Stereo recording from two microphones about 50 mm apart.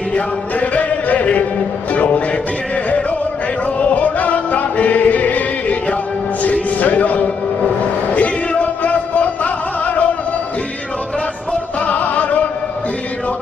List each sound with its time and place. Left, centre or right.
0.1 s music: left
3.9 s music: left
11.8 s music: left